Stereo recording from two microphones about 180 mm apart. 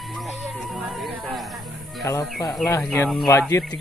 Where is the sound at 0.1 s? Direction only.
Centre (ahead or behind).